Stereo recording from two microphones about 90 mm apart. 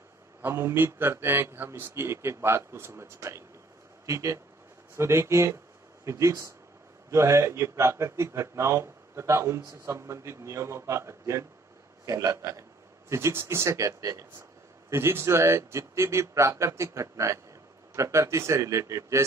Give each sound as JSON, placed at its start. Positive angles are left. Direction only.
{"t": 0.4, "sound": "a man's voice", "side_deg": -30}